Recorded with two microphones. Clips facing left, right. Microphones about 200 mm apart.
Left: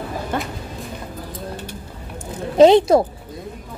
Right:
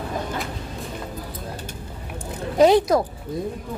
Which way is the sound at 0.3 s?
60° left (ahead or behind).